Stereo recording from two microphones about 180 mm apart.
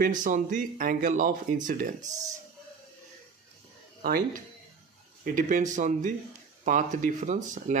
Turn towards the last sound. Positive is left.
turn(degrees=-45)  # may be behind; listen again after turning